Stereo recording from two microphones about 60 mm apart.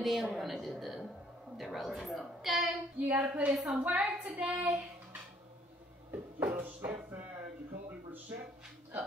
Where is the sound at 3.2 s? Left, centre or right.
Right.